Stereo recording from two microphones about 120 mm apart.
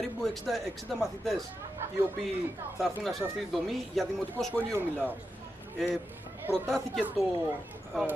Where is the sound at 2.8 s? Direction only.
Centre (ahead or behind).